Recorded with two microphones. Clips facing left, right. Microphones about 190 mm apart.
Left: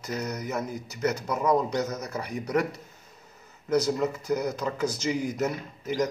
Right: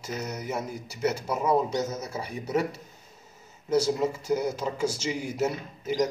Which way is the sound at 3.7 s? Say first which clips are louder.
Even; 25° right (ahead or behind).